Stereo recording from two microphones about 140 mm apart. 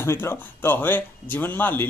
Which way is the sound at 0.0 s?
20° left (ahead or behind).